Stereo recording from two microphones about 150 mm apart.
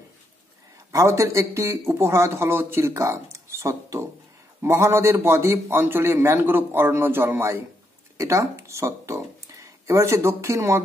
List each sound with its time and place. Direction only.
0.9 s a man's voice: 20° right (ahead or behind)